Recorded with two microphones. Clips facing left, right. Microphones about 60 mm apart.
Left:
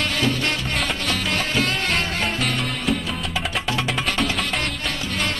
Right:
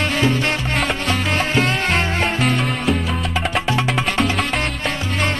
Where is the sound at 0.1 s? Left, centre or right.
Right.